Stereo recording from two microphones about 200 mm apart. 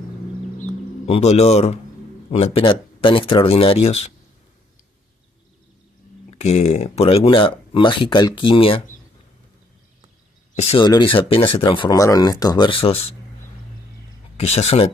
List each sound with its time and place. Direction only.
0.6 s bird: 35° left (ahead or behind)
2.3 s speech: 30° left (ahead or behind)
6.3 s speech: 30° left (ahead or behind)
10.5 s a sound: 35° left (ahead or behind)
10.8 s speech: 20° left (ahead or behind)
14.3 s speech: 30° left (ahead or behind)